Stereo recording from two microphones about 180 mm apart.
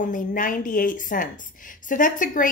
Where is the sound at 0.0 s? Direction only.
50° left (ahead or behind).